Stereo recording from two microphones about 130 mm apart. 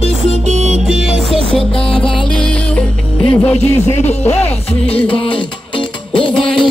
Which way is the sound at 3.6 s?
55° left (ahead or behind).